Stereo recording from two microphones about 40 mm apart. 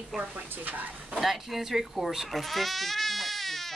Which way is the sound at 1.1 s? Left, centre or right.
Centre.